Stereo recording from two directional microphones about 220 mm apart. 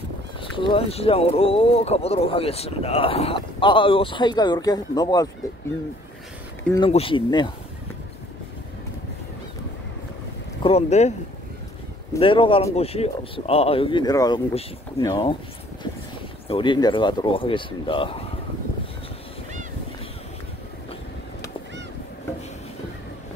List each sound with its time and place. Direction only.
0.4 s speech: 25° left (ahead or behind)
6.8 s speech: 25° left (ahead or behind)
10.6 s speech: 30° left (ahead or behind)
12.2 s speech: 25° left (ahead or behind)
16.4 s speech: 20° left (ahead or behind)